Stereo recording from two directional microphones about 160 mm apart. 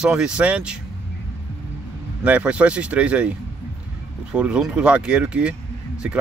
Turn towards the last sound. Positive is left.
turn(degrees=-5)  # may be behind; listen again after turning